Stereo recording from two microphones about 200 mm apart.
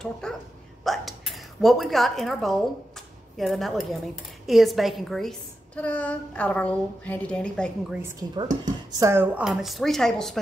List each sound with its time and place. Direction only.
0.0 s a woman's voice: 5° left (ahead or behind)
0.8 s a sound: centre (ahead or behind)
3.3 s speech: centre (ahead or behind)
7.9 s a woman's voice: 15° right (ahead or behind); by 10.4 s centre (ahead or behind)